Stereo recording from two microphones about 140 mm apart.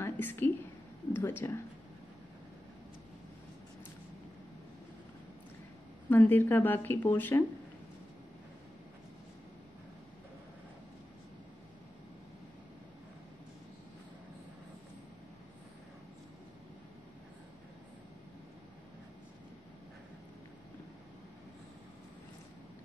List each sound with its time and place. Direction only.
0.0 s a sound: 15° left (ahead or behind)
1.1 s speech: 15° left (ahead or behind)
6.0 s speech: 15° left (ahead or behind)